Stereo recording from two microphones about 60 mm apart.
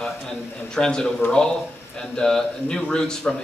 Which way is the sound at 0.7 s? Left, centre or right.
Centre.